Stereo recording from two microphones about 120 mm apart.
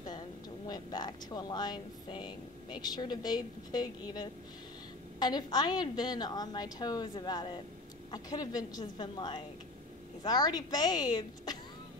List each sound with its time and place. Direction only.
0.7 s speech: 35° left (ahead or behind)
5.2 s speech: 35° left (ahead or behind)